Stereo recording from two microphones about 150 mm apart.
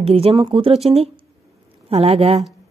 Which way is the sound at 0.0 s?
40° right (ahead or behind).